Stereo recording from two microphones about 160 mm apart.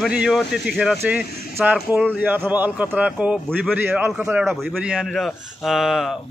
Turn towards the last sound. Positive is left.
turn(degrees=0)  # may be behind; listen again after turning